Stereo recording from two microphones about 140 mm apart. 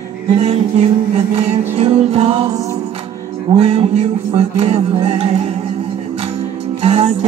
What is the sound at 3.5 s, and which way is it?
Music, 45° right (ahead or behind).